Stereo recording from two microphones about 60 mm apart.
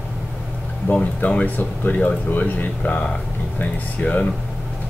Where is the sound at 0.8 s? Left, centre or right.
Left.